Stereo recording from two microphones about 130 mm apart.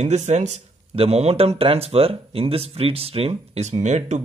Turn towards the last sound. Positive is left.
turn(degrees=-60)  # may be behind; listen again after turning